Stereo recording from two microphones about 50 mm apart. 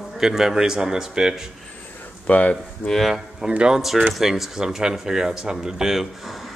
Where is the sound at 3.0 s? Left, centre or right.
Centre.